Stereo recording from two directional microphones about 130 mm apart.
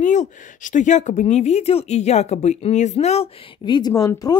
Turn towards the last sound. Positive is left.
turn(degrees=25)  # may be behind; listen again after turning